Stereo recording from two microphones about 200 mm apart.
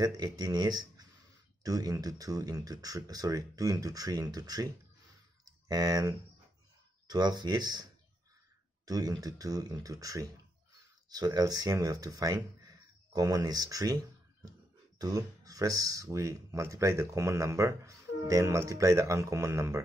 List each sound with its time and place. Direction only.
0.0 s speech: 20° right (ahead or behind)
8.8 s speech: 20° right (ahead or behind)